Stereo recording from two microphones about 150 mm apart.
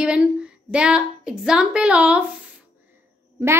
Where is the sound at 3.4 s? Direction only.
15° right (ahead or behind).